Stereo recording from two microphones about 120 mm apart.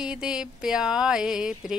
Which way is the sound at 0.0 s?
5° right (ahead or behind).